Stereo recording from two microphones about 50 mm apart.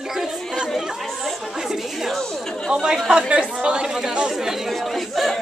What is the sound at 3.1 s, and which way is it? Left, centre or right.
Speech, centre.